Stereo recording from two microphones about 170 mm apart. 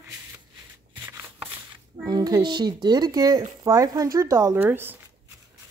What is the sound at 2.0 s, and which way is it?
Speech, 25° right (ahead or behind).